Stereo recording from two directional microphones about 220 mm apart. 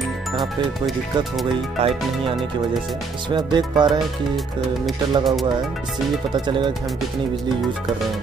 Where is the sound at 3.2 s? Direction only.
20° right (ahead or behind).